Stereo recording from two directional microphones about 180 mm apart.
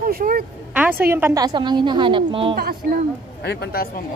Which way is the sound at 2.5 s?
55° right (ahead or behind).